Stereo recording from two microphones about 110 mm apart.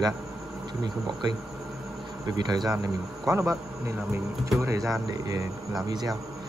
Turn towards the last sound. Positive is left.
turn(degrees=-35)  # may be behind; listen again after turning